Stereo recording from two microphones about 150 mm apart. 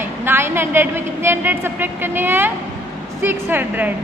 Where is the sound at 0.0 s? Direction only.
15° right (ahead or behind).